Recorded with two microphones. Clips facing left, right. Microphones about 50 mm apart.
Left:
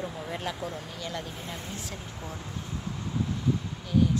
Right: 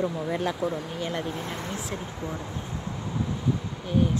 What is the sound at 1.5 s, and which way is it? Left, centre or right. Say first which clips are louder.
Speech: right 5 dB; right.